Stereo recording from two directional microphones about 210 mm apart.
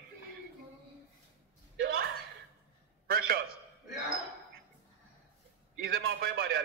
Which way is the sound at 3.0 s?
45° right (ahead or behind).